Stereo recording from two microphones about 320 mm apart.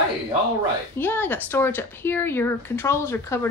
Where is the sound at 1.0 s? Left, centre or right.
Centre.